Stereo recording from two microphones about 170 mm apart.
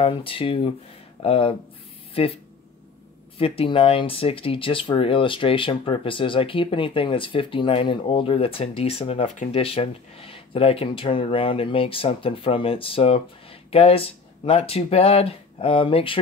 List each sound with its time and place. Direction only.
0.0 s speech: 30° left (ahead or behind)
3.3 s speech: 35° left (ahead or behind)